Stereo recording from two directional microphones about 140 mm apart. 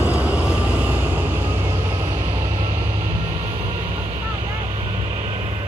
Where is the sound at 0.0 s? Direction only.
10° right (ahead or behind).